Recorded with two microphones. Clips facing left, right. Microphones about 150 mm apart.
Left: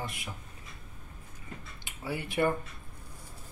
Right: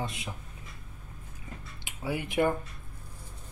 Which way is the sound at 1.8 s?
15° right (ahead or behind).